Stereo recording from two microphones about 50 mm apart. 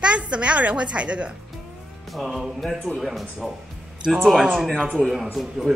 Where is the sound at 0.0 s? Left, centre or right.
Right.